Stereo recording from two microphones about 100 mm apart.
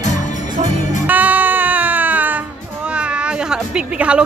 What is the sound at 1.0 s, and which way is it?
Music, 15° right (ahead or behind).